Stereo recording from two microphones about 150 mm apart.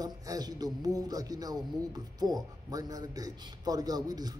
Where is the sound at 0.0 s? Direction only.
25° right (ahead or behind).